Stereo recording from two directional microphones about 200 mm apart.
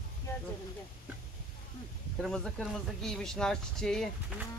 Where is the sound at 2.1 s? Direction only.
Centre (ahead or behind).